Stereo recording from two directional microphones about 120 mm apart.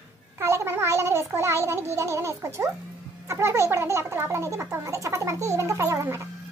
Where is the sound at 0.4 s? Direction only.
20° right (ahead or behind).